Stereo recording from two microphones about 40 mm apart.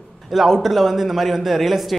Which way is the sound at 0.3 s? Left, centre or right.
Centre.